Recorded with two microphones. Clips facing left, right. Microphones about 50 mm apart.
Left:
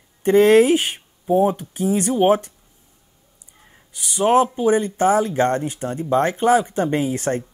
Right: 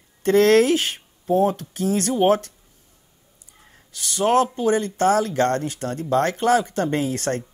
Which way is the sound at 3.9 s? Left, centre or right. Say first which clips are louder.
Left 2 dB; centre.